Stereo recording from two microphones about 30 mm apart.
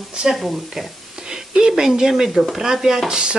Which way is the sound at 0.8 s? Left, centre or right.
Centre.